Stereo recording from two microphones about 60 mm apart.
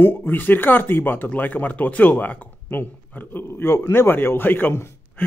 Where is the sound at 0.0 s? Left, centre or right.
Left.